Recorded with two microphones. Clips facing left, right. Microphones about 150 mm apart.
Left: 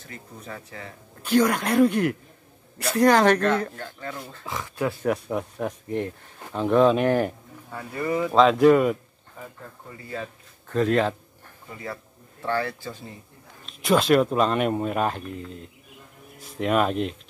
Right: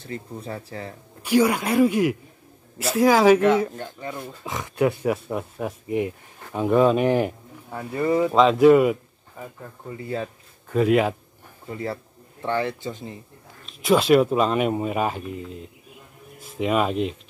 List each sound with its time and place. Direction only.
0.0 s speech: 30° right (ahead or behind)
1.2 s speech: 10° right (ahead or behind)
5.0 s speech: 5° right (ahead or behind)
8.0 s speech: 25° right (ahead or behind)
8.3 s speech: centre (ahead or behind)
9.4 s speech: 15° right (ahead or behind)
12.4 s speech: 20° right (ahead or behind)
13.7 s speech: centre (ahead or behind)